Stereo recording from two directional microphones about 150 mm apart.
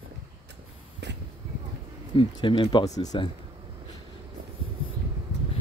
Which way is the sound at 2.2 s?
35° left (ahead or behind).